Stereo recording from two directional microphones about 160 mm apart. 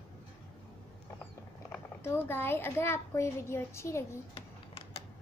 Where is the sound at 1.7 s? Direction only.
15° left (ahead or behind).